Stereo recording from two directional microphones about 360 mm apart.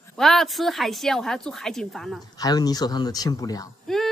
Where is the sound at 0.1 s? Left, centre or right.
Centre.